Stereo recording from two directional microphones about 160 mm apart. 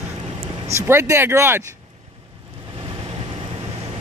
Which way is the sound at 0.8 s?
15° right (ahead or behind).